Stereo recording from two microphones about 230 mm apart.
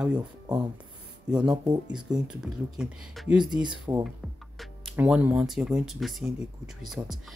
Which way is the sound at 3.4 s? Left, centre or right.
Centre.